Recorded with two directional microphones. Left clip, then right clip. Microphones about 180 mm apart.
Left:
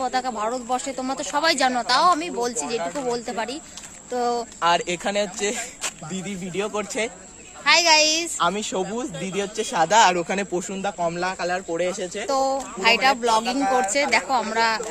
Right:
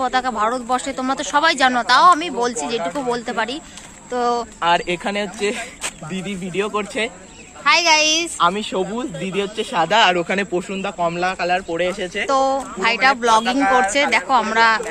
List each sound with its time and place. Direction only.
0.0 s speech: 5° left (ahead or behind)
4.6 s speech: 90° left; by 5.7 s 75° left (ahead or behind)
6.1 s speech: 60° left (ahead or behind)
7.6 s speech: 10° left (ahead or behind)
8.4 s speech: 65° left (ahead or behind); by 12.3 s 50° left (ahead or behind)
12.3 s speech: 10° left (ahead or behind)